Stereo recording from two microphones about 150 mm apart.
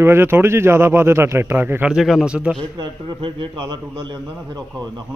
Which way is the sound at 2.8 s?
35° right (ahead or behind).